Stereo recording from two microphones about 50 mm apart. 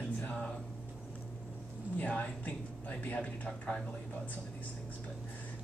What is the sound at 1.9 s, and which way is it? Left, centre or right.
A man's voice, left.